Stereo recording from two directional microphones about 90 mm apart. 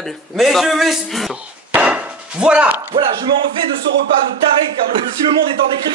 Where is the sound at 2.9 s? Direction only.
80° right.